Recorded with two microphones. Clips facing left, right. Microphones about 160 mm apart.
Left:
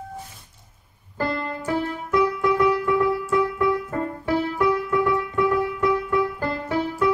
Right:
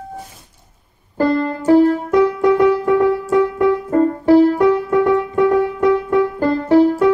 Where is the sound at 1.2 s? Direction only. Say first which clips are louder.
Right 10 dB; 40° right (ahead or behind).